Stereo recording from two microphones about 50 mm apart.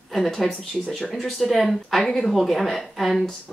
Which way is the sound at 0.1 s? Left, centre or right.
Centre.